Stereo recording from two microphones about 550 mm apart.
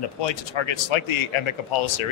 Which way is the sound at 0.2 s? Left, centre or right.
Left.